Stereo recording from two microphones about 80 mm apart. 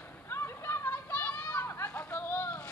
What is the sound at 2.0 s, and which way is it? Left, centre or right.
Vehicle, left.